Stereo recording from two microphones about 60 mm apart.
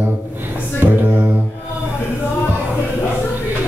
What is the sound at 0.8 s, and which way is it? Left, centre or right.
Speech, right.